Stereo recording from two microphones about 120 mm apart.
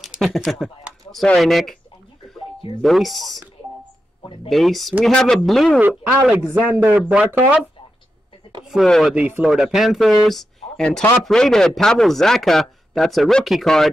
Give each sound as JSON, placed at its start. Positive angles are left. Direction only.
{"t": 0.0, "sound": "speech", "side_deg": 0}
{"t": 2.8, "sound": "speech", "side_deg": 0}
{"t": 4.5, "sound": "speech", "side_deg": 0}
{"t": 5.8, "sound": "a man's voice", "side_deg": -15}
{"t": 8.8, "sound": "speech", "side_deg": 5}
{"t": 9.1, "sound": "speech", "side_deg": -10}